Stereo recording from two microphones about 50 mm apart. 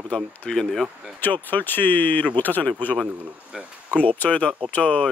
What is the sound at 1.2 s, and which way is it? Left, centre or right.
Speech, left.